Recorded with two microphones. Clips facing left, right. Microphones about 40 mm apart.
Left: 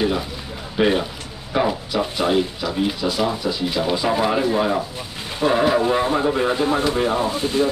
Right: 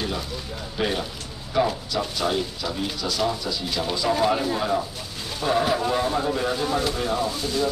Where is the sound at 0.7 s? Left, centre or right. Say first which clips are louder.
Left 8 dB; left.